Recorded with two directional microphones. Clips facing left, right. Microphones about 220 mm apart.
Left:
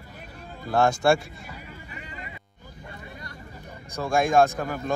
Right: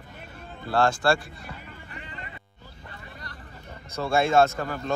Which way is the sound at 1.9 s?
5° left (ahead or behind).